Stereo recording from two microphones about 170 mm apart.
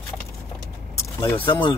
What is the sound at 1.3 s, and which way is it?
Speech, 30° left (ahead or behind).